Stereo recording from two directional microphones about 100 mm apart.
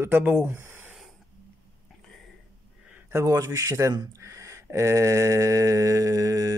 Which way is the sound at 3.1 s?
30° right (ahead or behind).